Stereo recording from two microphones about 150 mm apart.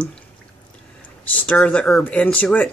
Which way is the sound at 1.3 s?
10° left (ahead or behind).